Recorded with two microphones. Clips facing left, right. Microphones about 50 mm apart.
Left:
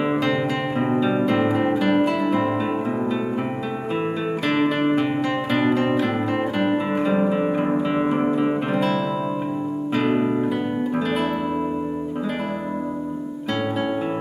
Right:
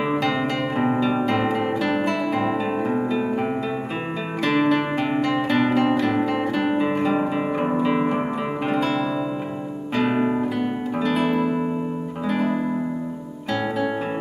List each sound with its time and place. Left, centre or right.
0.0 s music: centre
0.3 s music: centre
2.4 s music: centre
4.4 s music: centre
11.0 s guitar: centre